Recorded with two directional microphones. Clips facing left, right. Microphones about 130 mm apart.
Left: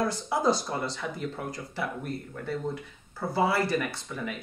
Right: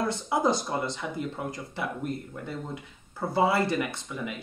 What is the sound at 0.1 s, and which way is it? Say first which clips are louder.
Speech: even; 20° right (ahead or behind).